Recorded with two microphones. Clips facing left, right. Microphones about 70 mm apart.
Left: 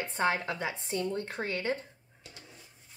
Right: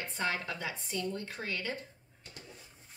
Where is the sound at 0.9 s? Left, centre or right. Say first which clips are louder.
Left 4 dB; left.